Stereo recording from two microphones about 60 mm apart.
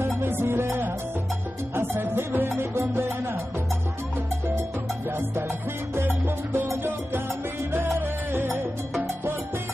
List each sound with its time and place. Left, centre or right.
0.2 s music: right
6.0 s music: right
8.3 s music: right